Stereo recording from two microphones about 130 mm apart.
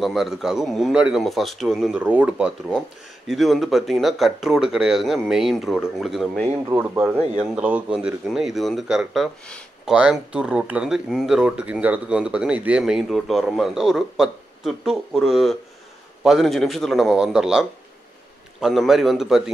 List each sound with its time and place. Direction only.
0.0 s speech: centre (ahead or behind)
2.0 s speech: 10° right (ahead or behind)
6.7 s speech: 15° right (ahead or behind)